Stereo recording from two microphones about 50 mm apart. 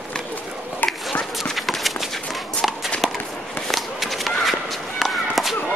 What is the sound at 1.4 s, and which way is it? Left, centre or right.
Clip-clop, centre.